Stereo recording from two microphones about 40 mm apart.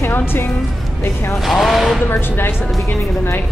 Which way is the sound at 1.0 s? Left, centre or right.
Left.